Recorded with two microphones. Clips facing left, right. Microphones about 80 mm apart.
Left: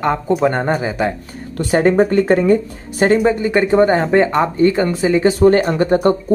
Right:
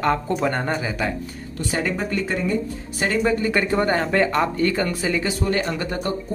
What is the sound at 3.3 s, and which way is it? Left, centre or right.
Speech, left.